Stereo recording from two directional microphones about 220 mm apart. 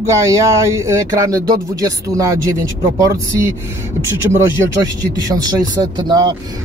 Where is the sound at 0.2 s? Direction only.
15° right (ahead or behind).